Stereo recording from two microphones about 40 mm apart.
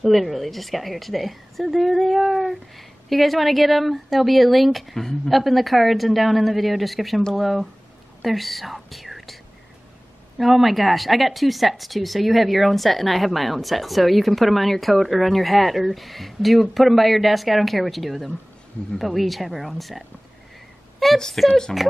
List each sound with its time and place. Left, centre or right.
0.0 s speech: centre
8.7 s whispering: centre
10.4 s speech: centre
21.2 s speech: centre